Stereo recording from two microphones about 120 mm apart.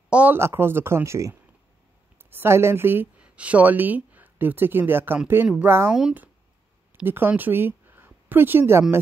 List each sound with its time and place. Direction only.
0.1 s speech: 15° right (ahead or behind)
2.3 s a woman's voice: 20° right (ahead or behind)